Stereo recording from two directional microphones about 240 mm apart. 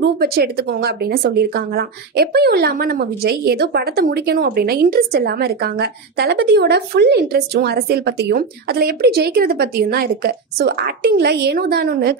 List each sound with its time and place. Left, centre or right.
0.0 s speech: right